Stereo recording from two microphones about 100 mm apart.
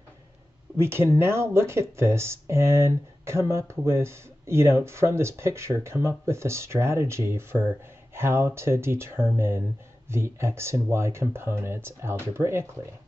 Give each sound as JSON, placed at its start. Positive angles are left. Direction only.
{"t": 0.7, "sound": "speech", "side_deg": -25}